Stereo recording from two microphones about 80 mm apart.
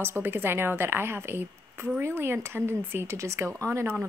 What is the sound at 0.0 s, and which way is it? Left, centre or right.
A woman's voice, right.